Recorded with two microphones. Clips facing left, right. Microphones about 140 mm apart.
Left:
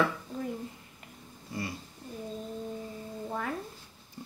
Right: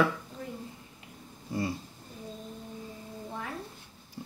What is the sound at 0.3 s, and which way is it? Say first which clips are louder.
Dishes: left 6 dB; 45° left (ahead or behind).